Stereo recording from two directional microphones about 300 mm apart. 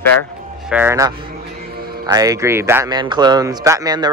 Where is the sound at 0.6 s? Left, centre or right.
Centre.